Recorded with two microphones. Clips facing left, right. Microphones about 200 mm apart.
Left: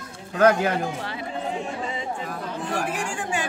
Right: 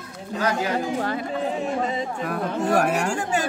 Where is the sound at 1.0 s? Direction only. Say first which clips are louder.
Right 6 dB; 45° right (ahead or behind).